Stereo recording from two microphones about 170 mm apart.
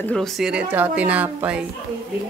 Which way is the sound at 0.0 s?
5° left (ahead or behind).